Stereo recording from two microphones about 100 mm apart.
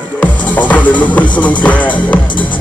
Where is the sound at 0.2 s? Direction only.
15° left (ahead or behind).